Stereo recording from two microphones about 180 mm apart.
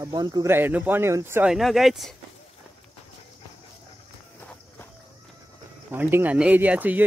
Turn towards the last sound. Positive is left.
turn(degrees=-10)  # may be behind; listen again after turning